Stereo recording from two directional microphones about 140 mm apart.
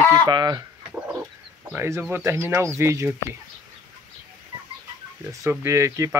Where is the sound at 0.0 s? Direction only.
20° left (ahead or behind).